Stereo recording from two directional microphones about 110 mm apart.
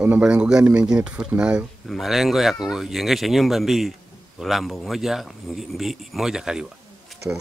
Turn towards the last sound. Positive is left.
turn(degrees=-10)  # may be behind; listen again after turning